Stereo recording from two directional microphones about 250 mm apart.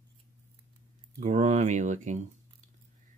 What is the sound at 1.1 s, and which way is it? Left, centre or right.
Speech, right.